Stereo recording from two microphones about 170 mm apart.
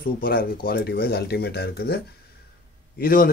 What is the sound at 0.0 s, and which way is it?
Speech, 60° left (ahead or behind).